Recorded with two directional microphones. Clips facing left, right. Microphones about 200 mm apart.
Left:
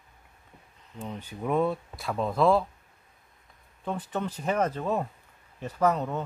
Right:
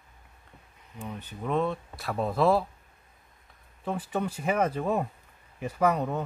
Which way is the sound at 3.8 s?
5° right (ahead or behind).